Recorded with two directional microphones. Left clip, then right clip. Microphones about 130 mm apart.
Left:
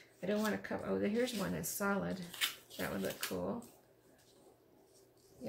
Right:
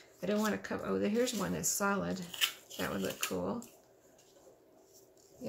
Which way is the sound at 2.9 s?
15° right (ahead or behind).